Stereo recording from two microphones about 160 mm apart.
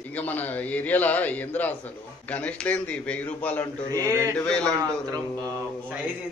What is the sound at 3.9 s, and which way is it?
Speech, 20° right (ahead or behind).